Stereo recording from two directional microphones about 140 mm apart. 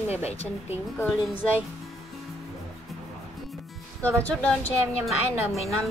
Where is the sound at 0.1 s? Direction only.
50° left (ahead or behind).